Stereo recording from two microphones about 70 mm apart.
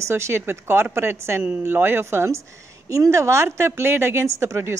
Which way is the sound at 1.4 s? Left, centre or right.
Right.